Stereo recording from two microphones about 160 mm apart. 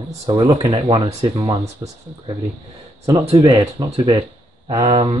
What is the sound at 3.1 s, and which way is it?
Speech, 30° right (ahead or behind).